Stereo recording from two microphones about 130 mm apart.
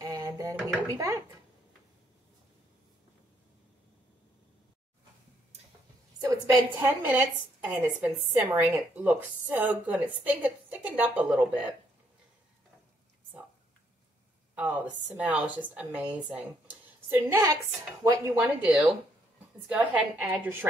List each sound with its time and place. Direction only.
0.0 s a sound: 25° right (ahead or behind)
0.8 s speech: 25° right (ahead or behind)
6.2 s a woman's voice: 15° right (ahead or behind)
14.5 s a woman's voice: 10° right (ahead or behind)
18.6 s a woman's voice: 5° right (ahead or behind)